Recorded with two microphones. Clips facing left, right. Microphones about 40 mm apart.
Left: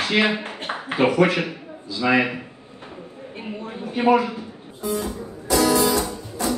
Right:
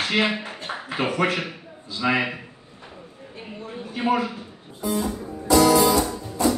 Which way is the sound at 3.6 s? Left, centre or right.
Left.